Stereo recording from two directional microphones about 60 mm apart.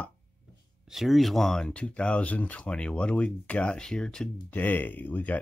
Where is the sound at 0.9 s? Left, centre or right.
Centre.